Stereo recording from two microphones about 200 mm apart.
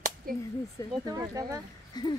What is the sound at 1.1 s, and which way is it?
Speech, 20° right (ahead or behind).